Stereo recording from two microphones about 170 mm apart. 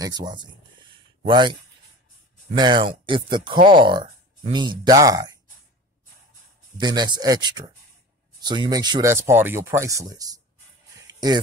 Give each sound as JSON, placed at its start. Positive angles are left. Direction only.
{"t": 0.0, "sound": "speech", "side_deg": -25}
{"t": 6.8, "sound": "speech", "side_deg": -25}
{"t": 11.0, "sound": "a sound", "side_deg": -25}